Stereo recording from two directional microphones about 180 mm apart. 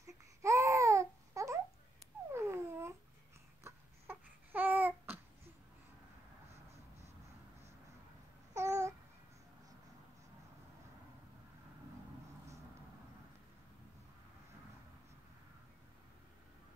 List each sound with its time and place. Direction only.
0.0 s babbling: 15° right (ahead or behind)
2.3 s a sound: 15° right (ahead or behind)
3.6 s babbling: 10° right (ahead or behind)
8.5 s babbling: 15° right (ahead or behind)